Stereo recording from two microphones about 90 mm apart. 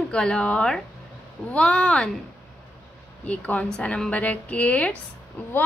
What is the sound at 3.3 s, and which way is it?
Speech, 15° left (ahead or behind).